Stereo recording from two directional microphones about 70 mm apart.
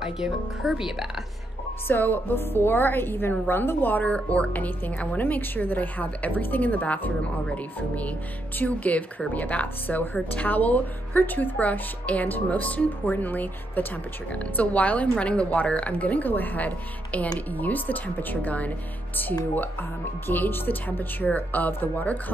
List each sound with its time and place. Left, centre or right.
0.0 s speech: centre
1.9 s speech: left